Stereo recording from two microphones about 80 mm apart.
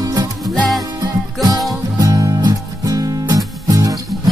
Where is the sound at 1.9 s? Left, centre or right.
Right.